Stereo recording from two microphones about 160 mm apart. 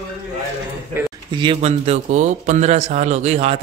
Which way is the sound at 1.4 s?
35° right (ahead or behind).